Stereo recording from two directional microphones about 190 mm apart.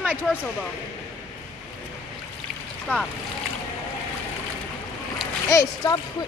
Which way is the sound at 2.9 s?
10° left (ahead or behind).